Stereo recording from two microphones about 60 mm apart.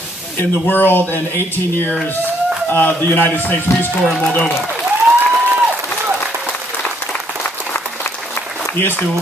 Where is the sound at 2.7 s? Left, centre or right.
Left.